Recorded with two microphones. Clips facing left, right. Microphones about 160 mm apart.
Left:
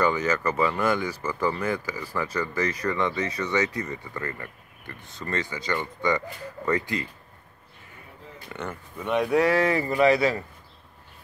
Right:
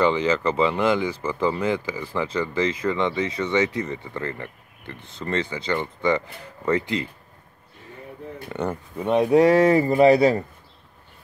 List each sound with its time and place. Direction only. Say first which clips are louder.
0.0 s speech: right 4 dB; 25° right (ahead or behind)
1.7 s speech: right 4 dB; 25° right (ahead or behind)
8.5 s speech: right 7 dB; 30° right (ahead or behind)